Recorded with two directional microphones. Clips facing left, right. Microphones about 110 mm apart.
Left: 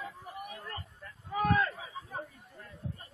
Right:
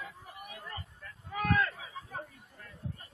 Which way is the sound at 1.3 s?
25° left (ahead or behind).